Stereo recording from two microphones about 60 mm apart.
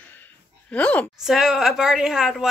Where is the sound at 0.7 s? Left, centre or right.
Left.